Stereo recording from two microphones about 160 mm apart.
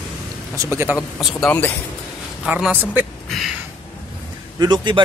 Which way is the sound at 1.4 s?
10° left (ahead or behind).